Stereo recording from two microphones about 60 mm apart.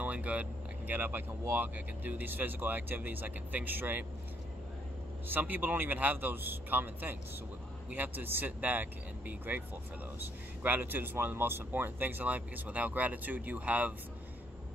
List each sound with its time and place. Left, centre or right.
0.0 s vehicle: right
1.5 s speech: right
5.3 s speech: right